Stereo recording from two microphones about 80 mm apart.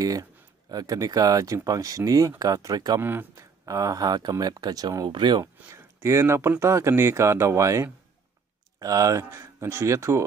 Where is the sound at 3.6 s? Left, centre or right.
Right.